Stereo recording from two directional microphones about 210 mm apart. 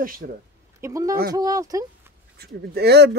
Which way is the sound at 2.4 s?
50° right (ahead or behind).